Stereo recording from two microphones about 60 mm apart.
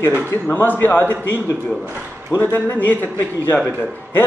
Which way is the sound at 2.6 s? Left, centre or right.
Left.